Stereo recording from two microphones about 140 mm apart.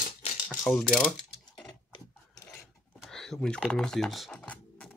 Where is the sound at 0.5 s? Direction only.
Centre (ahead or behind).